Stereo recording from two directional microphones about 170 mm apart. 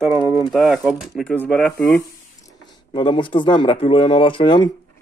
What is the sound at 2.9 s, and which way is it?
Speech, 30° left (ahead or behind).